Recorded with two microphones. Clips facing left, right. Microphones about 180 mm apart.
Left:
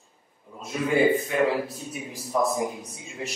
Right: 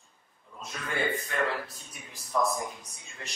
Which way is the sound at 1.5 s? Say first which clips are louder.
Left 8 dB; 20° left (ahead or behind).